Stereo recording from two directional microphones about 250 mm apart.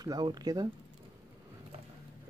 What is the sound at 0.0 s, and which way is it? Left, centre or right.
Speech, centre.